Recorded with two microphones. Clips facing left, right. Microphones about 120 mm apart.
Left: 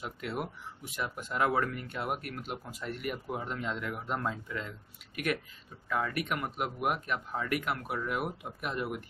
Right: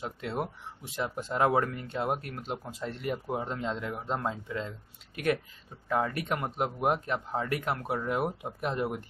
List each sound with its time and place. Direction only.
0.0 s speech: 30° right (ahead or behind)